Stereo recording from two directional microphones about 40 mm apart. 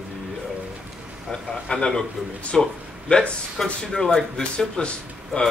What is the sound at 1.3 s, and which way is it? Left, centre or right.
A man's voice, centre.